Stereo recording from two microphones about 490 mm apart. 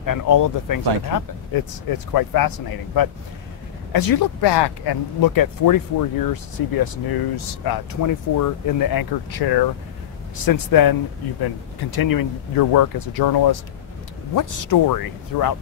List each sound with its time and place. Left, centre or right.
0.0 s speech: left